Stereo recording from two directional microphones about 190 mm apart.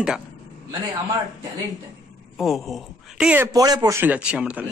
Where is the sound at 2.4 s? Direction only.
Centre (ahead or behind).